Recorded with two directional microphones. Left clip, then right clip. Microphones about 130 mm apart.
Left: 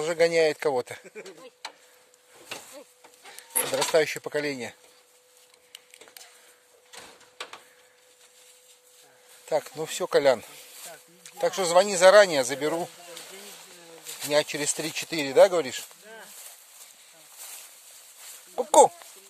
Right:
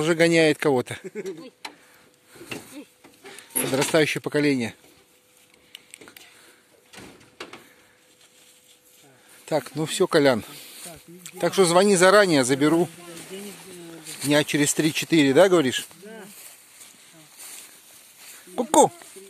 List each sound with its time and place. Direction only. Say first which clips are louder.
0.0 s speech: right 3 dB; 10° left (ahead or behind)
1.0 s speech: right 9 dB; 45° right (ahead or behind)
3.9 s speech: right 3 dB; 20° left (ahead or behind)
6.9 s a sound: right 1 dB; 30° right (ahead or behind)
9.5 s speech: right 2 dB; 20° left (ahead or behind)
13.2 s a sound: right 5 dB; 30° right (ahead or behind)
14.0 s a sound: right 6 dB; 30° left (ahead or behind)
14.3 s speech: right 4 dB; 10° left (ahead or behind)
18.6 s speech: even; centre (ahead or behind)